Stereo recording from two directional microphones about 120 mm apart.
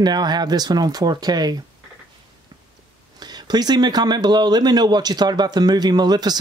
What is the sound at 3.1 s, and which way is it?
Speech, 35° right (ahead or behind).